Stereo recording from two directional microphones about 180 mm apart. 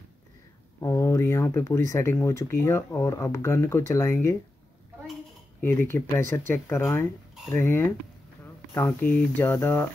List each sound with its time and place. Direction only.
0.7 s speech: 15° left (ahead or behind)
5.6 s speech: 10° left (ahead or behind)